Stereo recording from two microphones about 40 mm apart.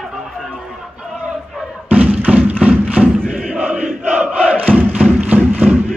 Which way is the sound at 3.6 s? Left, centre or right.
Right.